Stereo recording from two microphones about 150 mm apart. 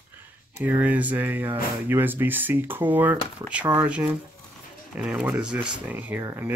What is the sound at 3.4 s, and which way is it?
Speech, 20° right (ahead or behind).